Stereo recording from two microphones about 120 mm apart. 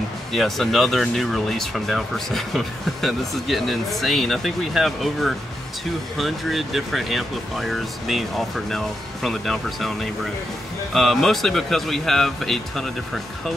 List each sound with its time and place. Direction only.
0.3 s speech: centre (ahead or behind)